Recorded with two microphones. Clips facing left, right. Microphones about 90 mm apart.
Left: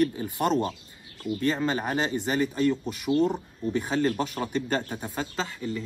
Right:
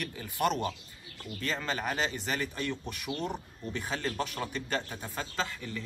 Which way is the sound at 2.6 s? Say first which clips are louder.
Left 11 dB; 5° left (ahead or behind).